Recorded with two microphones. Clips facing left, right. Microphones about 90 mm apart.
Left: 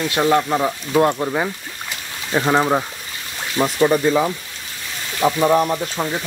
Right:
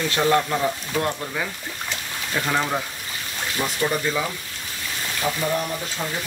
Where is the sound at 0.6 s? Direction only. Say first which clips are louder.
Left 7 dB; 30° left (ahead or behind).